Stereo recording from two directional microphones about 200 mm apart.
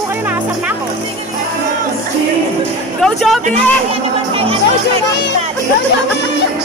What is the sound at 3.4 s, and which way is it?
Speech, 30° right (ahead or behind).